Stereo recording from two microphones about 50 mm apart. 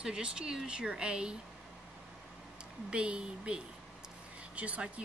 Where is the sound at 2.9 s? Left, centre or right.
Right.